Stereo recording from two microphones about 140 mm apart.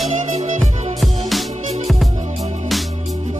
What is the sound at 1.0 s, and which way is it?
Music, centre (ahead or behind).